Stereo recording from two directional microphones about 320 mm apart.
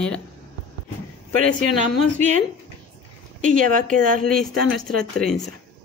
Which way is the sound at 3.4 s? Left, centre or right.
Right.